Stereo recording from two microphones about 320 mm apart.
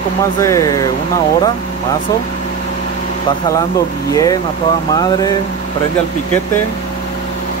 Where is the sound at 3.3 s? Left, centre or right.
Centre.